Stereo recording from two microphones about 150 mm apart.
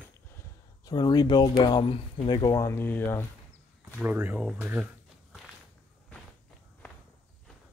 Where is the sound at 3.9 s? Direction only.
10° right (ahead or behind).